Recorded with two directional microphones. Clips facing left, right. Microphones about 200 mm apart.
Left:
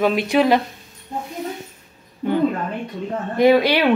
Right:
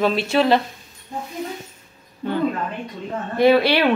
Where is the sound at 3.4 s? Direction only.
15° left (ahead or behind).